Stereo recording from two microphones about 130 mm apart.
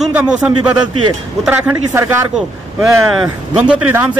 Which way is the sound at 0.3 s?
5° right (ahead or behind).